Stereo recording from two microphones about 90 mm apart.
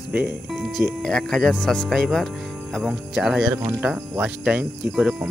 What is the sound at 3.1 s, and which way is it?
Speech, 5° right (ahead or behind).